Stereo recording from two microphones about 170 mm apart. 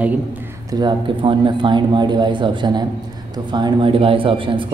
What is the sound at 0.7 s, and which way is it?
A man's voice, 25° right (ahead or behind).